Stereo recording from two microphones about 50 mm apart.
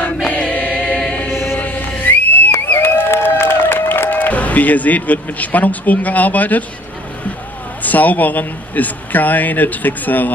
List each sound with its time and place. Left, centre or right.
0.3 s choir: left
1.3 s mantra: left
1.6 s music: left
2.6 s a sound: left
7.8 s speech: left